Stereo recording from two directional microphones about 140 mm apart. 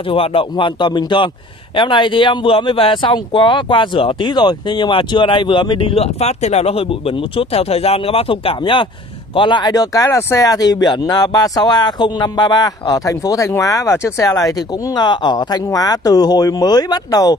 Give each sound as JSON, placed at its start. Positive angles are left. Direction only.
{"t": 0.1, "sound": "speech", "side_deg": 40}